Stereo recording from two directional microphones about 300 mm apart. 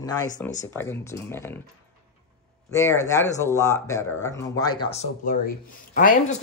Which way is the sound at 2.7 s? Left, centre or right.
Centre.